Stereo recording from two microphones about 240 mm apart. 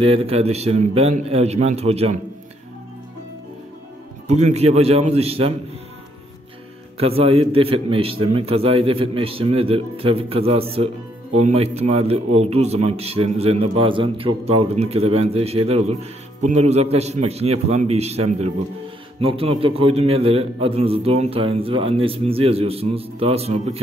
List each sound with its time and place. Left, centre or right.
0.0 s a man's voice: right
4.3 s a man's voice: right
7.0 s a man's voice: right